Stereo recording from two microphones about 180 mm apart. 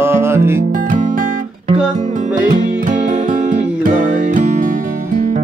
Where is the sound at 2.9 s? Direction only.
50° right (ahead or behind).